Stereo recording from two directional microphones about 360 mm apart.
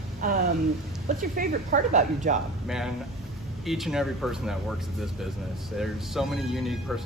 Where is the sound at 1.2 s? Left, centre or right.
Right.